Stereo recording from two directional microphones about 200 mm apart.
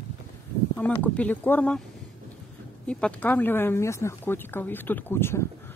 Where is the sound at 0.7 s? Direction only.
10° left (ahead or behind).